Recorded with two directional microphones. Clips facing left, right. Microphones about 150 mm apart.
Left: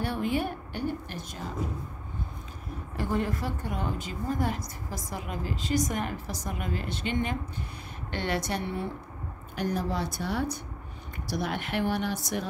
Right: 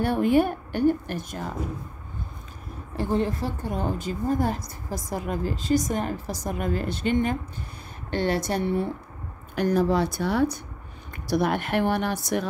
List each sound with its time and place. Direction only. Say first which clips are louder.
0.0 s a woman's voice: right 8 dB; 50° right (ahead or behind)
3.0 s a woman's voice: right 4 dB; 30° right (ahead or behind)
9.6 s speech: right 8 dB; 80° right
11.2 s a woman's voice: right 8 dB; 60° right (ahead or behind)